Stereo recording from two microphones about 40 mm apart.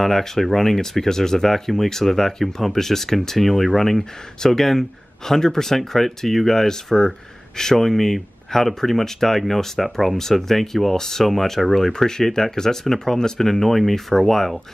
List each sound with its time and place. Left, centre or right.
0.0 s speech: centre